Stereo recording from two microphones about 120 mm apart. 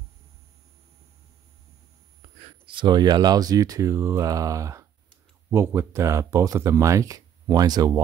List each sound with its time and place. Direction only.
2.6 s speech: 40° right (ahead or behind)